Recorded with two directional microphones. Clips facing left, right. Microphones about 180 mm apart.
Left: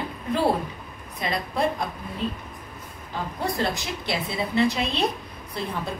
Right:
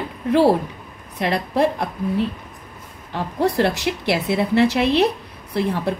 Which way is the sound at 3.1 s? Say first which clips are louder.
Right 8 dB; 75° right (ahead or behind).